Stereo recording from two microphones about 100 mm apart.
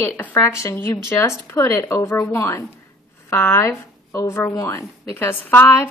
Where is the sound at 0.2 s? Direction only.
15° left (ahead or behind).